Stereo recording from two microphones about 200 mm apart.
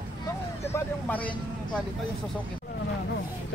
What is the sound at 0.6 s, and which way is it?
Speech, 10° left (ahead or behind).